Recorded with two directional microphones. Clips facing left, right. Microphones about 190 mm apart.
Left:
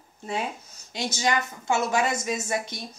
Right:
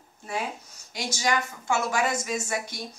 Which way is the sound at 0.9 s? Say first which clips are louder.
Left 1 dB; 25° left (ahead or behind).